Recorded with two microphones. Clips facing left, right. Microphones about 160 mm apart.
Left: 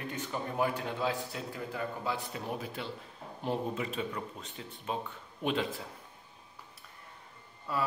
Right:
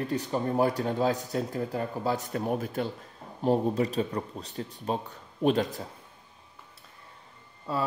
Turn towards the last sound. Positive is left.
turn(degrees=-25)  # may be behind; listen again after turning